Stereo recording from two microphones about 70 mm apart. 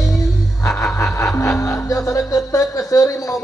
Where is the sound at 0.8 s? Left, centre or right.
Left.